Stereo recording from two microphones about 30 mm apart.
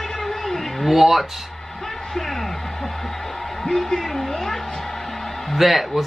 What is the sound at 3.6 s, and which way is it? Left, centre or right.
Speech, centre.